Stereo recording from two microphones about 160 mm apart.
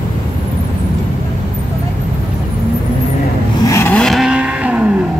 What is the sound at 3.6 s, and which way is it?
Vehicle, 20° left (ahead or behind).